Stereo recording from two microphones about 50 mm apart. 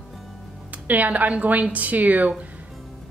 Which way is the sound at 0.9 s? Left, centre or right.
Right.